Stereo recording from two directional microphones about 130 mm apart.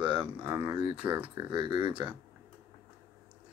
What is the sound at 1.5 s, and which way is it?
Speech, 35° right (ahead or behind).